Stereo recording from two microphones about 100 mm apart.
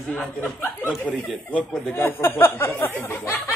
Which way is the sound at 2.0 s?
20° left (ahead or behind).